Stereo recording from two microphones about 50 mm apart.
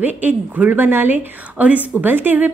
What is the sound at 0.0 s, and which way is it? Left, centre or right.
A woman's voice, right.